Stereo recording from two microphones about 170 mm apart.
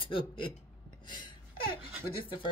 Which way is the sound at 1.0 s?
25° left (ahead or behind).